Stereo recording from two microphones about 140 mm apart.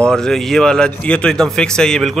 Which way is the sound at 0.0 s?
5° left (ahead or behind).